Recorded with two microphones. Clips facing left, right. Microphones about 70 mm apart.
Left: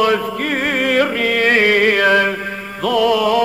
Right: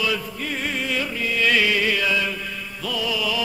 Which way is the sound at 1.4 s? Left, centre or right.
Left.